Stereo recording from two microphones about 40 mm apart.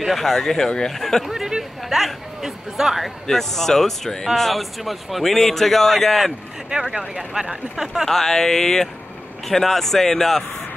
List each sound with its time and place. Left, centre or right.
0.0 s speech: centre
0.9 s speech: centre
1.3 s a sound: centre
1.6 s a woman's voice: centre
3.3 s a man's voice: centre
6.7 s speech: centre
8.1 s speech: centre